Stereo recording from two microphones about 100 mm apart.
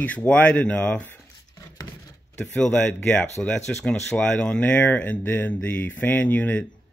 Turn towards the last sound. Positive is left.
turn(degrees=15)  # may be behind; listen again after turning